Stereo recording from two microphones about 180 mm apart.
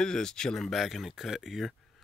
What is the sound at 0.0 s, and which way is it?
Speech, 5° left (ahead or behind).